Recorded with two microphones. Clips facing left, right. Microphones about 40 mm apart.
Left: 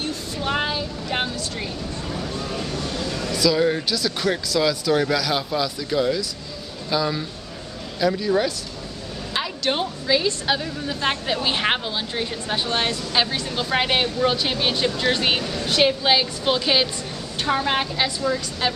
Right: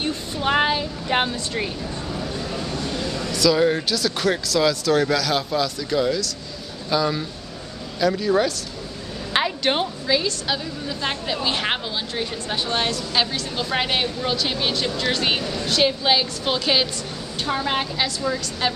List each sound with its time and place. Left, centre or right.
0.0 s vehicle: right
2.0 s a sound: centre
3.3 s a sound: centre
3.5 s speech: centre
9.7 s a woman's voice: right
10.2 s a woman's voice: left
18.2 s speech: centre